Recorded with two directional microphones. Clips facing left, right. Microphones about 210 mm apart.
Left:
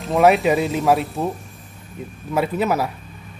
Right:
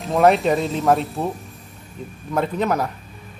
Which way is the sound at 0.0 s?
Centre (ahead or behind).